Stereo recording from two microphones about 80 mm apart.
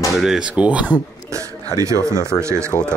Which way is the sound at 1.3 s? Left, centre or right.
Right.